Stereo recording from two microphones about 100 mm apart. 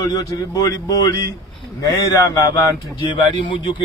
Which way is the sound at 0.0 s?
40° left (ahead or behind).